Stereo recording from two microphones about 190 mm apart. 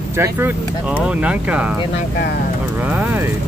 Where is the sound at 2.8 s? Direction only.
10° right (ahead or behind).